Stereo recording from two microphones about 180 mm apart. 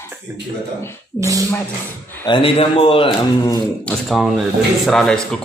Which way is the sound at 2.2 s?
30° left (ahead or behind).